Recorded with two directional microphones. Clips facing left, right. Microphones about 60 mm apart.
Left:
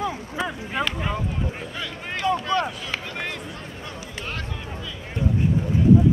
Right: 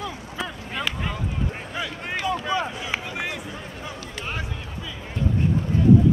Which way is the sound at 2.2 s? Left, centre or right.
Centre.